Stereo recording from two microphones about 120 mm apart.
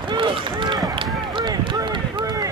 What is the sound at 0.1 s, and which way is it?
Run, 45° right (ahead or behind).